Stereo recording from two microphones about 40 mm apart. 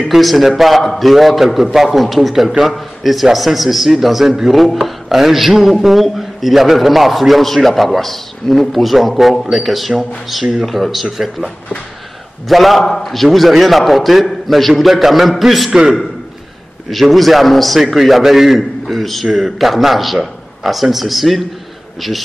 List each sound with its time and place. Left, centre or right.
0.1 s a man's voice: centre
5.1 s a man's voice: centre
12.4 s a man's voice: centre
15.7 s a man's voice: centre
16.9 s a man's voice: centre